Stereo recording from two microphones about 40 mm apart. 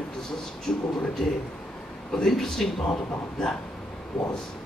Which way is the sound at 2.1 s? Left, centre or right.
Centre.